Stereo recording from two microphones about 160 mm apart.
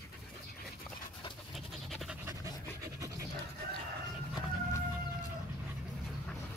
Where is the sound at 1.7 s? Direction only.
Centre (ahead or behind).